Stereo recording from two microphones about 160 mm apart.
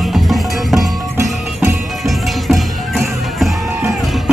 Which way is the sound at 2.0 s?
Centre (ahead or behind).